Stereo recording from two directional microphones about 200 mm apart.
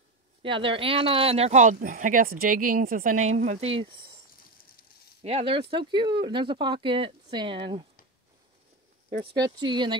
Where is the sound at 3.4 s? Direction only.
30° right (ahead or behind).